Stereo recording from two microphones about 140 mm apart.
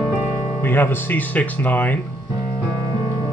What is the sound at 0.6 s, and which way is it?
Speech, 15° left (ahead or behind).